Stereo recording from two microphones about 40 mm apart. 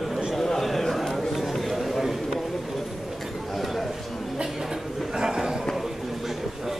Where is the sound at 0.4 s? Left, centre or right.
Centre.